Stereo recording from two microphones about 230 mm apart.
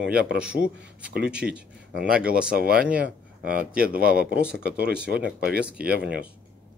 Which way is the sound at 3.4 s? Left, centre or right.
Right.